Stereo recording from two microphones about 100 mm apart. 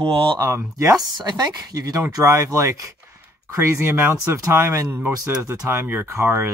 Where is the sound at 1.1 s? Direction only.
45° right (ahead or behind).